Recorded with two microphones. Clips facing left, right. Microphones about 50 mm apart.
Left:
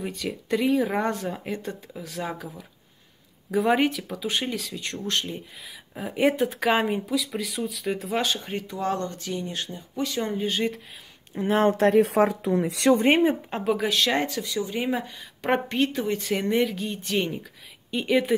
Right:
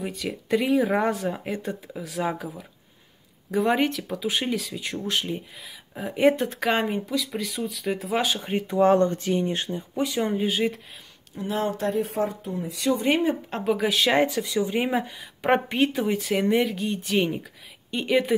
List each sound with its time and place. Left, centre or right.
0.0 s speech: centre
8.5 s speech: right
9.9 s speech: centre
11.3 s speech: left
11.7 s speech: left
12.0 s speech: left
12.9 s speech: left
13.5 s speech: centre